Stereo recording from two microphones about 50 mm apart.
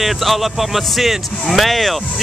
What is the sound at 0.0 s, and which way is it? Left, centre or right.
Speech, centre.